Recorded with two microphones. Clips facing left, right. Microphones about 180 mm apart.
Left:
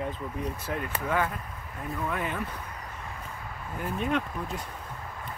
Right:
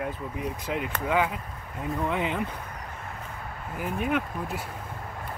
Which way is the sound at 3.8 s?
5° right (ahead or behind).